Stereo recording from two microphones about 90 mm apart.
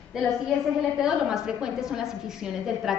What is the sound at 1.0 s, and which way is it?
A woman's voice, 5° right (ahead or behind).